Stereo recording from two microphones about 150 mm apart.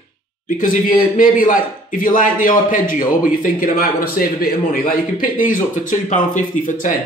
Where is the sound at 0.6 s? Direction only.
65° left (ahead or behind).